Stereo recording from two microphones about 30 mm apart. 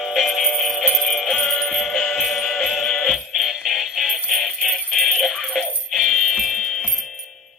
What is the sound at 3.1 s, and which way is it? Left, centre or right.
Music, centre.